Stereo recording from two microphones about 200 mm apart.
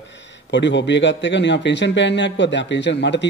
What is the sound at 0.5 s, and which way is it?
A man's voice, 60° left (ahead or behind).